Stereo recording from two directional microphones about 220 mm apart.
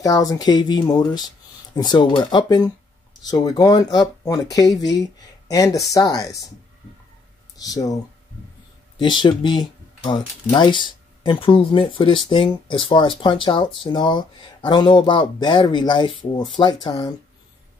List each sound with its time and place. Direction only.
0.0 s speech: 15° left (ahead or behind)
7.6 s speech: 15° left (ahead or behind)
9.0 s speech: 20° left (ahead or behind)